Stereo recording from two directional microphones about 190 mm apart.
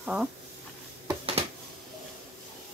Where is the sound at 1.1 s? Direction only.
30° right (ahead or behind).